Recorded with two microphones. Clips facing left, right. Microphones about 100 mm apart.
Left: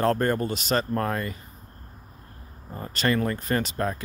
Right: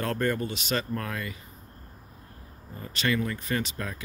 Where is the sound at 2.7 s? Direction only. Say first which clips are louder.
Left 3 dB; 40° left (ahead or behind).